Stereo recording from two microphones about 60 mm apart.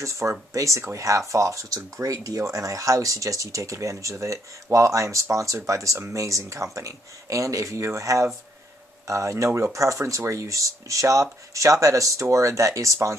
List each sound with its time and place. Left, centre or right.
0.0 s speech: right